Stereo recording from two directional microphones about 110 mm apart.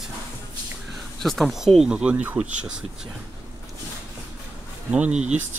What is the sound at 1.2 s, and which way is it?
Speech, centre (ahead or behind).